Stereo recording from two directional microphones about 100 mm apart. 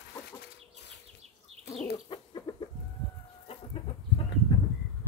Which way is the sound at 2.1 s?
50° left (ahead or behind).